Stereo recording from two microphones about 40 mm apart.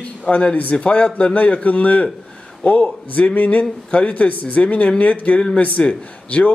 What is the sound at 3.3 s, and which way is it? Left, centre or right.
Speech, left.